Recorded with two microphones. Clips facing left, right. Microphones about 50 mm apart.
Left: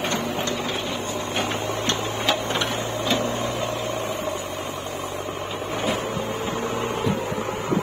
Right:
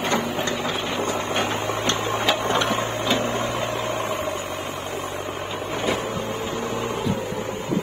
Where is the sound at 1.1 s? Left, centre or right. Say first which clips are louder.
Right 2 dB; right.